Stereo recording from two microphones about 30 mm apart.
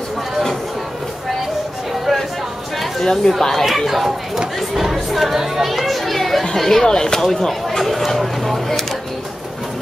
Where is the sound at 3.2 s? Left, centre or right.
Left.